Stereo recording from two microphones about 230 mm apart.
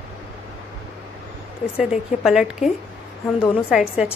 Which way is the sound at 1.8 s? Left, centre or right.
Centre.